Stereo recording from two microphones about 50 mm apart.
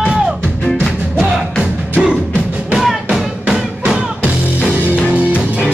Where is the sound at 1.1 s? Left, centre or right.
Centre.